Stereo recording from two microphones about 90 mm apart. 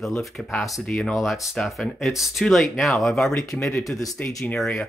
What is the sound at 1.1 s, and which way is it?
Speech, centre (ahead or behind).